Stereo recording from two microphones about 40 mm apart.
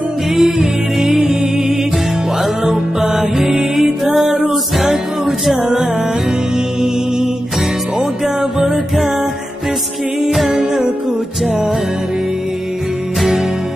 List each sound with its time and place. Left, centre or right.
0.4 s music: centre
5.6 s music: centre
8.0 s music: centre
10.5 s music: centre